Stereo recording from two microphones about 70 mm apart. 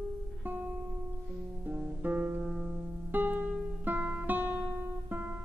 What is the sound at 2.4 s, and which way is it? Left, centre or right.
Music, centre.